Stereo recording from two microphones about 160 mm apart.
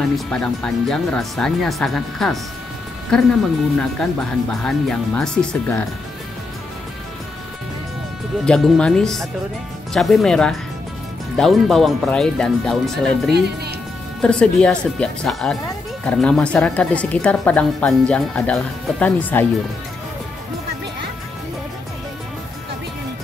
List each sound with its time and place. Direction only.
0.3 s speech: 5° left (ahead or behind)
8.5 s speech: 5° left (ahead or behind)